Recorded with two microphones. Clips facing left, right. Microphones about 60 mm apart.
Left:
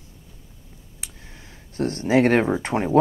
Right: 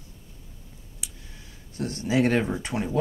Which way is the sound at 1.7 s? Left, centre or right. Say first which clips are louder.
Left 6 dB; left.